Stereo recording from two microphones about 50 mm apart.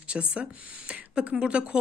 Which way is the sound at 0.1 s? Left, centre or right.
Right.